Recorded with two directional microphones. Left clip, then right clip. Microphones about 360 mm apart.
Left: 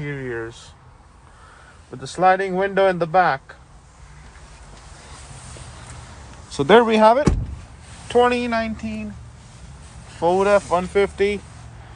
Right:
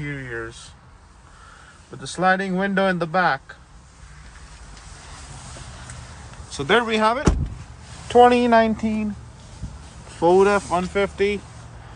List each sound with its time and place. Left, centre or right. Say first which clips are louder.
0.0 s a sound: left 2 dB; centre
2.0 s speech: left 3 dB; centre
6.5 s speech: left 5 dB; centre
8.1 s speech: right 4 dB; centre
10.1 s speech: even; centre